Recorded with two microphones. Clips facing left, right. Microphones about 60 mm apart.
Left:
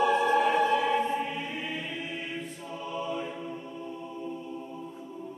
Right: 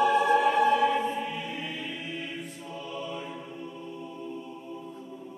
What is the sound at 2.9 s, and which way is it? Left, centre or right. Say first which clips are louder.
Music: left 4 dB; centre.